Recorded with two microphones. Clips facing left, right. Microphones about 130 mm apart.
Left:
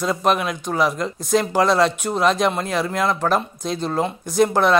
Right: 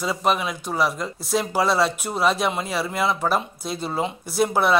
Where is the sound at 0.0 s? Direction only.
5° right (ahead or behind).